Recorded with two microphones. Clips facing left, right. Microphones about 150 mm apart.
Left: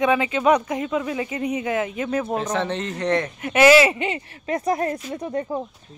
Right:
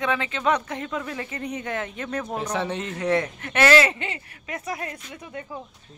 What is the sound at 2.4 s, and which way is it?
Speech, 10° right (ahead or behind).